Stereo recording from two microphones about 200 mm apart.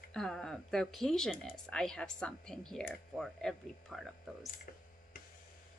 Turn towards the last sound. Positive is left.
turn(degrees=0)  # may be behind; listen again after turning